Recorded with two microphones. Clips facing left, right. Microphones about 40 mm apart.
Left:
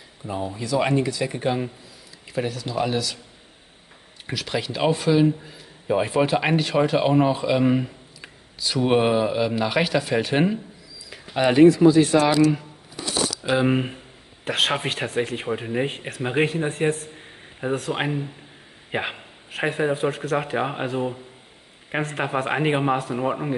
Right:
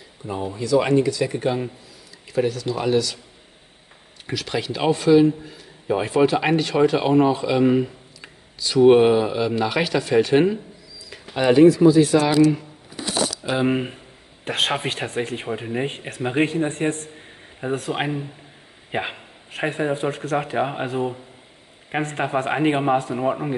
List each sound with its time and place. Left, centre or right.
0.3 s a man's voice: centre
0.6 s speech: centre
4.3 s a man's voice: centre
11.5 s speech: left
13.4 s a man's voice: centre